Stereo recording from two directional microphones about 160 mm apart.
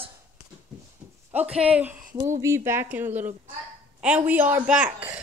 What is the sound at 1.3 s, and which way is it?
A woman's voice, 10° right (ahead or behind).